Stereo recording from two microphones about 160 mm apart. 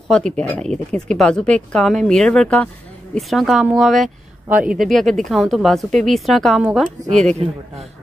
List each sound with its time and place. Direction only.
0.1 s speech: 5° left (ahead or behind)